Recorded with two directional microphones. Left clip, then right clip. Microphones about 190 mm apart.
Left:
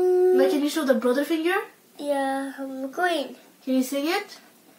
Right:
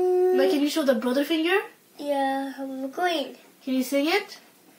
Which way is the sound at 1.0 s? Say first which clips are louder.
Left 1 dB; 55° right (ahead or behind).